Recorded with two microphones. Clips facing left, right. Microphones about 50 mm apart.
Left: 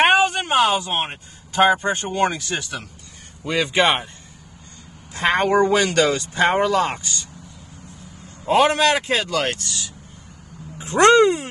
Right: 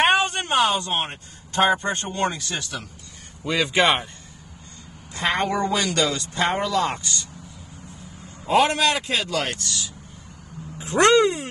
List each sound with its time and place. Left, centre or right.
0.0 s a sound: centre
2.1 s speech: left
3.4 s a man's voice: centre
5.2 s speech: left
6.9 s speech: centre
8.5 s speech: left
11.0 s speech: left